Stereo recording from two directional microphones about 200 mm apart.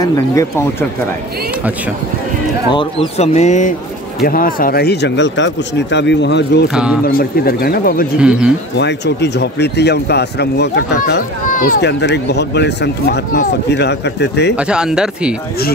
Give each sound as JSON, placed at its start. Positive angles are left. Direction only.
{"t": 0.0, "sound": "speech", "side_deg": 15}
{"t": 2.7, "sound": "speech", "side_deg": 25}
{"t": 6.7, "sound": "speech", "side_deg": -5}
{"t": 7.1, "sound": "speech", "side_deg": 45}
{"t": 8.2, "sound": "speech", "side_deg": -5}
{"t": 8.7, "sound": "speech", "side_deg": 60}
{"t": 11.8, "sound": "speech", "side_deg": 60}
{"t": 14.5, "sound": "speech", "side_deg": -5}